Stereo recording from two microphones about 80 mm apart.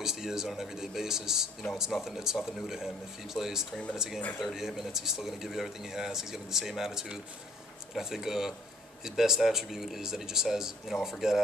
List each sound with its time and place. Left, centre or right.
0.0 s speech: centre